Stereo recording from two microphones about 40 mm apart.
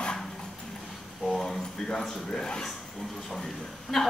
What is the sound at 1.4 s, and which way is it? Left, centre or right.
A woman's voice, centre.